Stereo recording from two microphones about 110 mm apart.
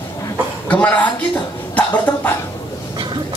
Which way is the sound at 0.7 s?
15° left (ahead or behind).